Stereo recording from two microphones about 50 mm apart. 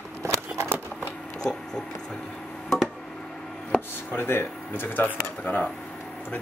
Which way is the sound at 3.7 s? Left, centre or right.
Left.